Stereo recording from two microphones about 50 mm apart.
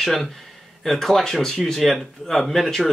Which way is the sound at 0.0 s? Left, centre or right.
Centre.